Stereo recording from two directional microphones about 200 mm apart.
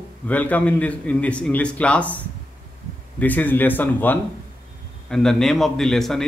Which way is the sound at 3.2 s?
10° left (ahead or behind).